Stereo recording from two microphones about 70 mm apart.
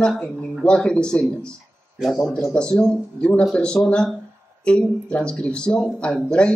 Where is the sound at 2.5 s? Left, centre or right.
Centre.